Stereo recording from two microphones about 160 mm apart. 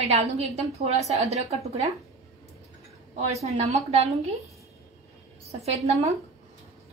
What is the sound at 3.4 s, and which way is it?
Speech, 40° right (ahead or behind).